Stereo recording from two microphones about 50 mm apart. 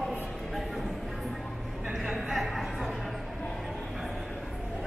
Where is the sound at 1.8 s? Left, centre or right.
Centre.